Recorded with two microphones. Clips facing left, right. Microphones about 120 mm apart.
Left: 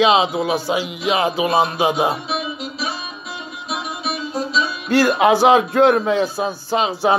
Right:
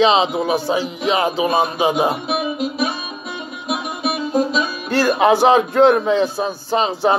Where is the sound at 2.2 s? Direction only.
55° right (ahead or behind).